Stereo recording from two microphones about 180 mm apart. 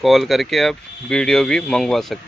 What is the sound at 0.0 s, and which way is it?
Speech, centre (ahead or behind).